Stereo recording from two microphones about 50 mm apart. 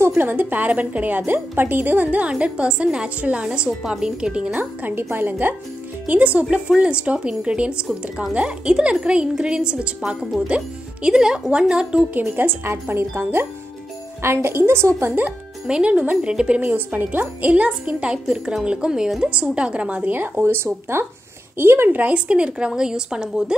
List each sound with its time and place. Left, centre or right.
0.2 s speech: right
2.0 s speech: right
4.6 s speech: right
6.0 s speech: right
12.1 s a woman's voice: right
15.6 s speech: centre
16.7 s speech: right
17.5 s speech: right; by 19.2 s centre
19.5 s speech: right
20.1 s speech: right
20.4 s speech: right
21.9 s speech: right